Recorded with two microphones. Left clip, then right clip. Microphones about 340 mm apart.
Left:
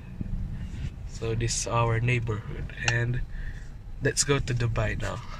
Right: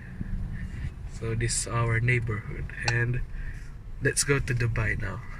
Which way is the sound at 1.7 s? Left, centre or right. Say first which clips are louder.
Left 2 dB; left.